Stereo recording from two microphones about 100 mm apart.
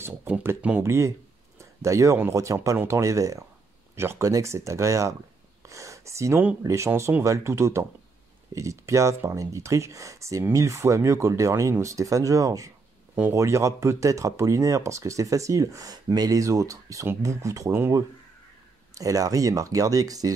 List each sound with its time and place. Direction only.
0.0 s speech: 25° right (ahead or behind)
0.8 s speech: 30° right (ahead or behind)
1.6 s a sound: 30° right (ahead or behind)
2.3 s speech: 30° right (ahead or behind)
5.7 s a sound: 30° right (ahead or behind)
6.6 s speech: 30° right (ahead or behind)
18.9 s speech: 35° right (ahead or behind)